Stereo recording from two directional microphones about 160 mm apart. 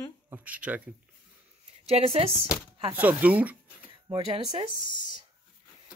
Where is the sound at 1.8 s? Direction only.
40° right (ahead or behind).